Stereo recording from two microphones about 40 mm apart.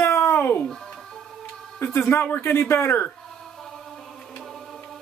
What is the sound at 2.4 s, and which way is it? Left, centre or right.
Speech, left.